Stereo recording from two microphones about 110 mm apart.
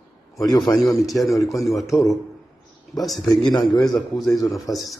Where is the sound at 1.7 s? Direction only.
30° left (ahead or behind).